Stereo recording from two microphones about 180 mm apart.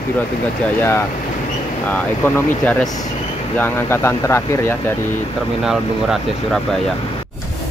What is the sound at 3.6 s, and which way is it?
Speech, 15° left (ahead or behind).